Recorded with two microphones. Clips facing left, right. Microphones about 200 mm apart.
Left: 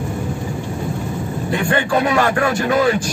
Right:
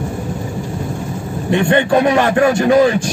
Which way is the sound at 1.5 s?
25° right (ahead or behind).